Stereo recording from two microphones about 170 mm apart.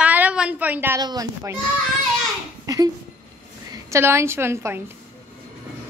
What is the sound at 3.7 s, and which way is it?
A woman's voice, 15° right (ahead or behind).